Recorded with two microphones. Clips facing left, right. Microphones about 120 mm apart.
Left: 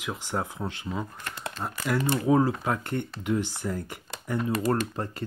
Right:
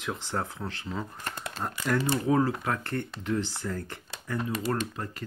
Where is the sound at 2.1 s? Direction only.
15° left (ahead or behind).